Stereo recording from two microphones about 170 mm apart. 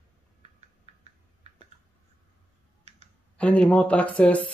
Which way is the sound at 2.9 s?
40° right (ahead or behind).